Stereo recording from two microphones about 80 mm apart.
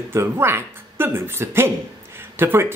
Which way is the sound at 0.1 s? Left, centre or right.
Right.